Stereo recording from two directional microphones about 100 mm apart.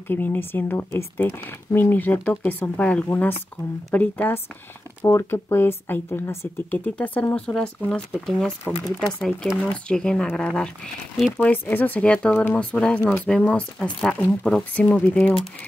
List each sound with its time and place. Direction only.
0.1 s speech: 20° left (ahead or behind)
5.0 s speech: 25° left (ahead or behind)